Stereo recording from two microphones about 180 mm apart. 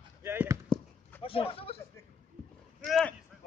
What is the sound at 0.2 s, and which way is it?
Basketball bounce, 15° right (ahead or behind).